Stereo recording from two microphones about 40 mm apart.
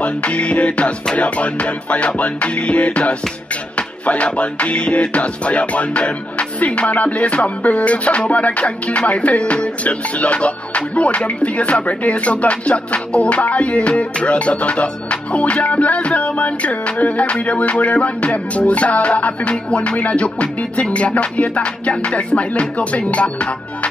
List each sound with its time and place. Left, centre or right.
0.0 s music: left